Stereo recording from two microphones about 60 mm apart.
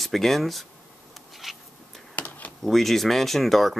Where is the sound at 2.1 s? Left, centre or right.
Left.